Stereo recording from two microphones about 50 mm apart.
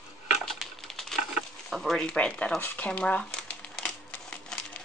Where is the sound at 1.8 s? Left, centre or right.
Centre.